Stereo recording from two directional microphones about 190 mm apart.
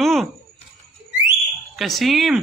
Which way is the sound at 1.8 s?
Centre (ahead or behind).